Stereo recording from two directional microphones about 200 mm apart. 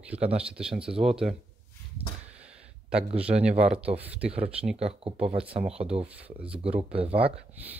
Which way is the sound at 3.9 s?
30° right (ahead or behind).